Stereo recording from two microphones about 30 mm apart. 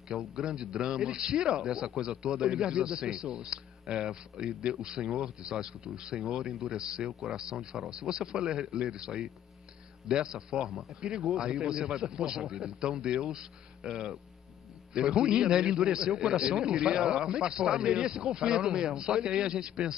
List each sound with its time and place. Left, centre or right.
0.1 s speech: right
7.5 s speech: centre
7.9 s speech: right